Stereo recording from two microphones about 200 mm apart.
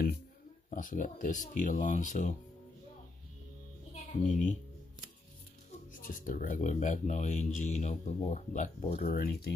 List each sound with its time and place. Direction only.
0.7 s speech: 40° left (ahead or behind)
3.9 s a child's voice: 35° left (ahead or behind)
5.9 s speech: 45° left (ahead or behind)